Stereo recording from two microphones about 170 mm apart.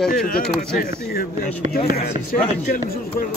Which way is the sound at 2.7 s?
60° left (ahead or behind).